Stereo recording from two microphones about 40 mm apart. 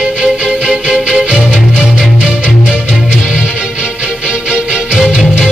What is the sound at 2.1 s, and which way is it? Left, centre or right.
Music, right.